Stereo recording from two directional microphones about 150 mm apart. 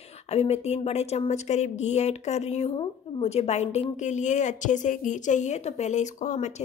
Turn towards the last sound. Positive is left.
turn(degrees=55)  # may be behind; listen again after turning